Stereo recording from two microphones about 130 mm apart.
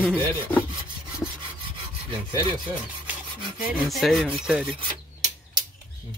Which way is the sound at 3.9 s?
Centre (ahead or behind).